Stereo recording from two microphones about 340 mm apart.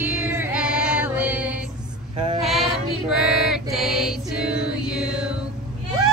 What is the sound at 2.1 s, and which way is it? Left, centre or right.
Female singing, centre.